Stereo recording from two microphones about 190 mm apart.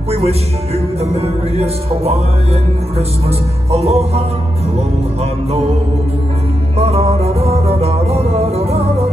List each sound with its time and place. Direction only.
0.1 s speech: 30° right (ahead or behind)
1.1 s music: 35° right (ahead or behind)
3.3 s music: 35° right (ahead or behind)
6.8 s music: 35° right (ahead or behind)